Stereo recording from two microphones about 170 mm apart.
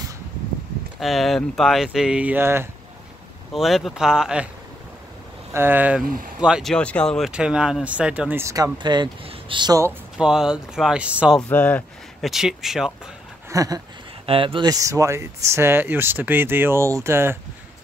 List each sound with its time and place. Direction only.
0.9 s speech: centre (ahead or behind)
3.5 s speech: centre (ahead or behind)
5.5 s speech: 10° right (ahead or behind)
8.7 s speech: 25° right (ahead or behind)
10.1 s speech: 5° right (ahead or behind)
11.4 s speech: 10° left (ahead or behind)
13.5 s a sound: 20° right (ahead or behind)
14.2 s speech: 30° right (ahead or behind); by 17.4 s 15° right (ahead or behind)